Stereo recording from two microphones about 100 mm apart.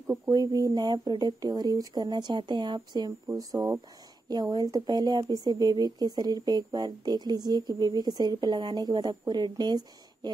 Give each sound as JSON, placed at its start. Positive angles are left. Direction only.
{"t": 0.3, "sound": "speech", "side_deg": -40}
{"t": 4.3, "sound": "speech", "side_deg": -45}